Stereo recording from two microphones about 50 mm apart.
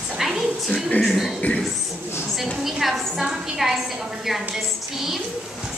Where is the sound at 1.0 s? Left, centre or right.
Centre.